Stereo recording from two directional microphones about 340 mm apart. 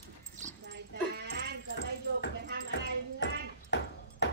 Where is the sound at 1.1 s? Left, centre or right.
Right.